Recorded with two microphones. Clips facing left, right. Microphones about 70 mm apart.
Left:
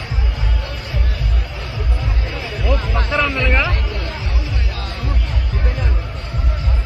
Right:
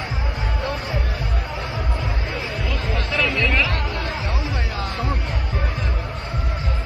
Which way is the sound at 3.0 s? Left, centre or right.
Left.